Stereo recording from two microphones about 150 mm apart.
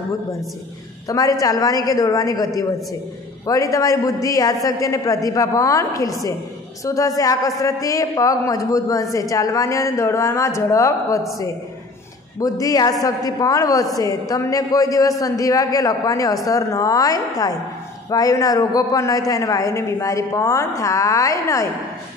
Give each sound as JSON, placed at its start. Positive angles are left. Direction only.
{"t": 1.0, "sound": "a man's voice", "side_deg": 25}
{"t": 12.4, "sound": "a man's voice", "side_deg": 25}